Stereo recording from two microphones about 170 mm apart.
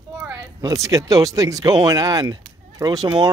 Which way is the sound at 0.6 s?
20° right (ahead or behind).